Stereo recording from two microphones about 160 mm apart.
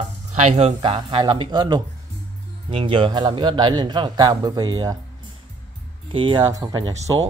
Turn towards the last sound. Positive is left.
turn(degrees=-25)  # may be behind; listen again after turning